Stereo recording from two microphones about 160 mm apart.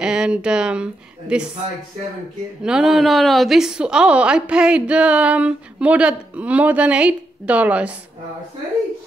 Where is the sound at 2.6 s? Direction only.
5° right (ahead or behind).